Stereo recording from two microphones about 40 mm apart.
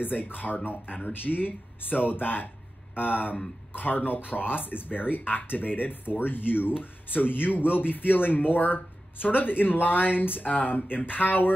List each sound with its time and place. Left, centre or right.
0.0 s speech: left
1.2 s speech: left